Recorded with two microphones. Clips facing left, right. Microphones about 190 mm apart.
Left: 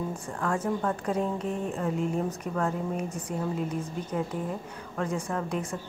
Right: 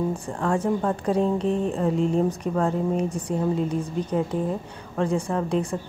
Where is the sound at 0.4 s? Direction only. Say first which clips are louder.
Right 5 dB; 30° right (ahead or behind).